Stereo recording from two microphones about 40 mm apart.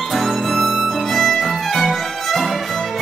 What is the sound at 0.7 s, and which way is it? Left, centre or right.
Violin, centre.